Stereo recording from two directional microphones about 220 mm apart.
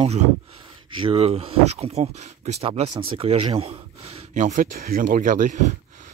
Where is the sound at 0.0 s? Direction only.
30° right (ahead or behind).